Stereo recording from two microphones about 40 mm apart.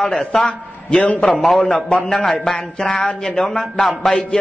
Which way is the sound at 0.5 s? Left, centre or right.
Left.